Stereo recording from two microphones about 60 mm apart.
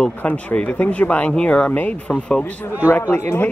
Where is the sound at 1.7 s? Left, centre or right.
Left.